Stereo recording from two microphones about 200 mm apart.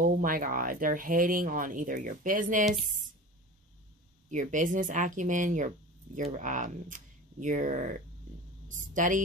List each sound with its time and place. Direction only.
0.0 s speech: 45° right (ahead or behind)
4.3 s a woman's voice: 40° right (ahead or behind)